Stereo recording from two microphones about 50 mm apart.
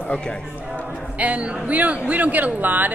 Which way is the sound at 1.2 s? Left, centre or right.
Right.